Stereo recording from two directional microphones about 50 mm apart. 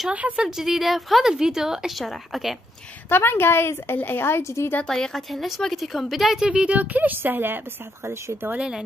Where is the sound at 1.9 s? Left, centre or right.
Centre.